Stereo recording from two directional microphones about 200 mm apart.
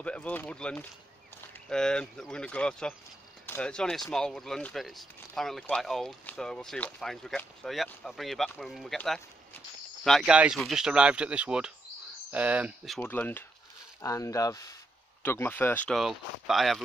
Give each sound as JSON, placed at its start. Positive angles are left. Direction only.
{"t": 0.0, "sound": "speech", "side_deg": 5}
{"t": 13.0, "sound": "speech", "side_deg": 10}